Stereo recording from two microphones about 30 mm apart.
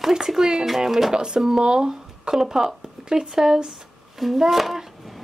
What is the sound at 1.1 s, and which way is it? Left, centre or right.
Speech, right.